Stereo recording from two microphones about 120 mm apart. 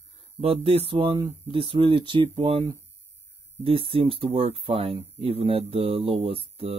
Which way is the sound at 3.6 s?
50° right (ahead or behind).